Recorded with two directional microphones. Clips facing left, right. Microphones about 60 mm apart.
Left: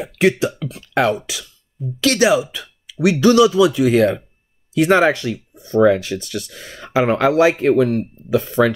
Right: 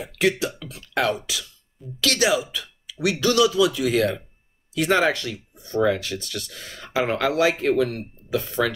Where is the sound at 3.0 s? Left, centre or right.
Left.